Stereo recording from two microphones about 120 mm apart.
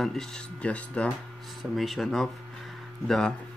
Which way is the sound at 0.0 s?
5° left (ahead or behind).